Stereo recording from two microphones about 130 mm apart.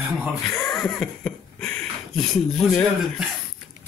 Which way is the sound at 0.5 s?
5° left (ahead or behind).